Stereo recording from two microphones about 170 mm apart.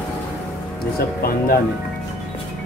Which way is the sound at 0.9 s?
60° left (ahead or behind).